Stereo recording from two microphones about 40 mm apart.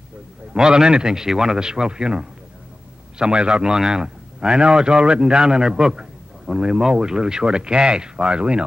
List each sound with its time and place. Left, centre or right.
0.5 s a man's voice: centre
3.7 s speech: centre
4.0 s a man's voice: right